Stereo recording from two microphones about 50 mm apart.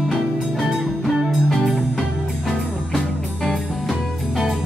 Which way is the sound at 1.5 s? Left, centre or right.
Centre.